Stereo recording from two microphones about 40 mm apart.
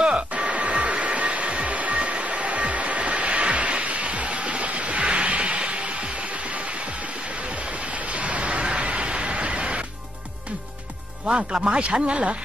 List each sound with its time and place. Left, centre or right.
0.3 s music: right
7.4 s a sound: right
11.2 s speech: right